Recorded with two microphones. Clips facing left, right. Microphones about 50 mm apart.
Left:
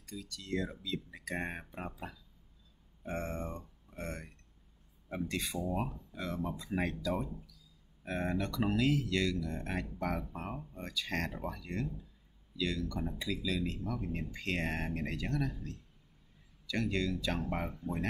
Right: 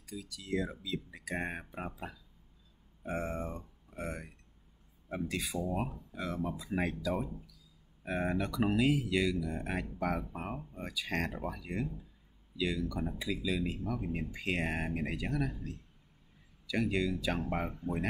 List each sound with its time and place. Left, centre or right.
0.0 s speech: centre
16.6 s speech: centre